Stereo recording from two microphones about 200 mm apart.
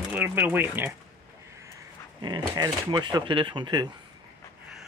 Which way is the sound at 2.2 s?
20° right (ahead or behind).